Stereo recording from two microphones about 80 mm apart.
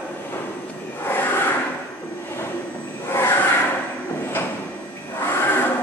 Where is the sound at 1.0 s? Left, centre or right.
Left.